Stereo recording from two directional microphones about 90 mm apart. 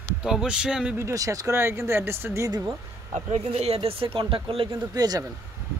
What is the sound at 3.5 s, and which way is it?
Speech, 90° right.